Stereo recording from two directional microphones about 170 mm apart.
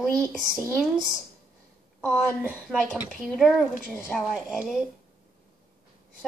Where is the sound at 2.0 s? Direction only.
5° right (ahead or behind).